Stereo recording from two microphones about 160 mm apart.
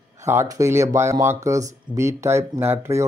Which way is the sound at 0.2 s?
15° right (ahead or behind).